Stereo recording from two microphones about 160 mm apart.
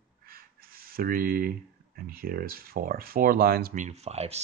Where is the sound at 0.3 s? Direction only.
65° right (ahead or behind).